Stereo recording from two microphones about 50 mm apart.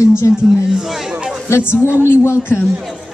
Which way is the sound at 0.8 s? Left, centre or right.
Centre.